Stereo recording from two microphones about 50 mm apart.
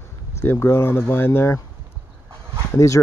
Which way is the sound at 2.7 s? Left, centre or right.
Left.